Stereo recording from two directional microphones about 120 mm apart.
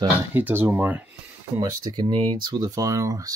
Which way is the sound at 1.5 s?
30° right (ahead or behind).